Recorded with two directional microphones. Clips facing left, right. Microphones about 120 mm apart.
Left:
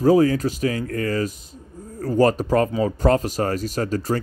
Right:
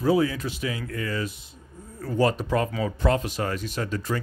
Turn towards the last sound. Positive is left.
turn(degrees=40)  # may be behind; listen again after turning